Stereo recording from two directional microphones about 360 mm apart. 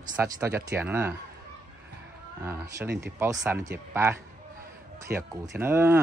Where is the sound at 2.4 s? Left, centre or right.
Centre.